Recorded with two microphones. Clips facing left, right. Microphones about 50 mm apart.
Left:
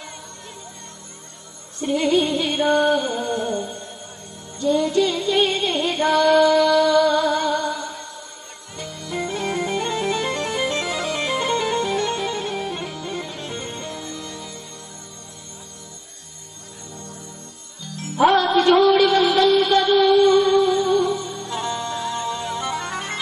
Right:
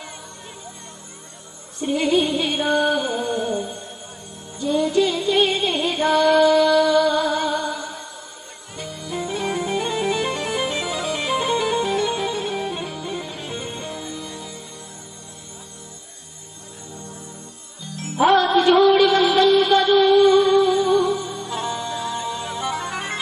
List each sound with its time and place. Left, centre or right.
1.8 s music: centre
18.1 s music: centre